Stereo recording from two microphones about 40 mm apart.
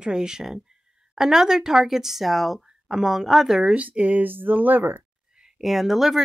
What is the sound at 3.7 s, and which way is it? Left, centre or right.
Speech, right.